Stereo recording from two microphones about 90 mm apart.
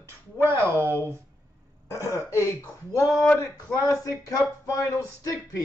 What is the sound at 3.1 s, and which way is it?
Speech, 5° left (ahead or behind).